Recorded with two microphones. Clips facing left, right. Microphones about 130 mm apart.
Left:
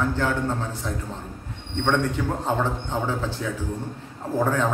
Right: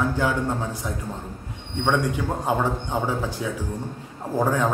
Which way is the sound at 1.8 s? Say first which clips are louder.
Even; 10° right (ahead or behind).